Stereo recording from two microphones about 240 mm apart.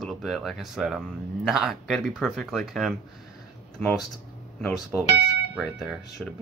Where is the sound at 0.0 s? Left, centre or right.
Centre.